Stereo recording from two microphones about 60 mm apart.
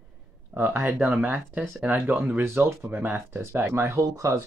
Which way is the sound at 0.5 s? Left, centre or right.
Right.